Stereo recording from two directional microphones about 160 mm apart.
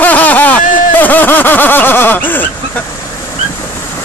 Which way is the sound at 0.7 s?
55° left (ahead or behind).